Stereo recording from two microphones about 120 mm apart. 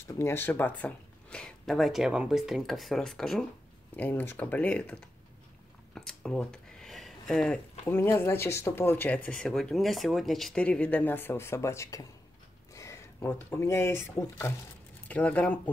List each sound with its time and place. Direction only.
0.1 s speech: 20° left (ahead or behind); by 3.4 s 5° left (ahead or behind)
3.9 s speech: 15° left (ahead or behind)
5.9 s a sound: 5° left (ahead or behind)
7.8 s speech: 20° left (ahead or behind)